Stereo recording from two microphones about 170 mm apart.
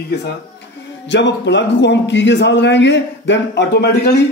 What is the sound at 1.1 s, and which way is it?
Speech, 90° left.